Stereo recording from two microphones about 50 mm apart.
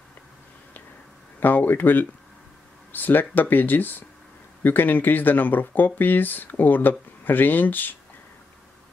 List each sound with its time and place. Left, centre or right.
1.4 s speech: left